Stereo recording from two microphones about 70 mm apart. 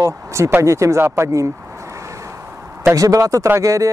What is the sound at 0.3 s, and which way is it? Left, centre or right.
Speech, right.